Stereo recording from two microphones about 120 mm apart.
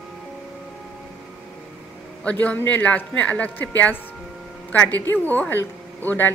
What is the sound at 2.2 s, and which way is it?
Speech, 15° left (ahead or behind).